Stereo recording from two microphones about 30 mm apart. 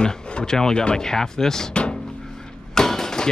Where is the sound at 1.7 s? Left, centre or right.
Left.